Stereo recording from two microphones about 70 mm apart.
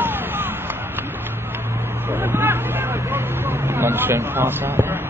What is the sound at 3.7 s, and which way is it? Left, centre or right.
Speech, right.